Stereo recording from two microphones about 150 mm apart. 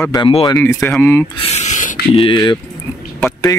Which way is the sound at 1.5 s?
55° left (ahead or behind).